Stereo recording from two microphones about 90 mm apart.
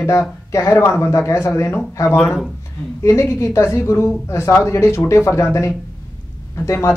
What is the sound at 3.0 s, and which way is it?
Speech, 30° left (ahead or behind).